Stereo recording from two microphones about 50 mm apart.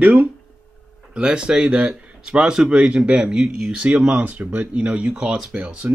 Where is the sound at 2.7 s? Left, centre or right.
Right.